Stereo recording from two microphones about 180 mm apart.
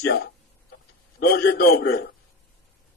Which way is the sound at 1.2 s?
60° left (ahead or behind).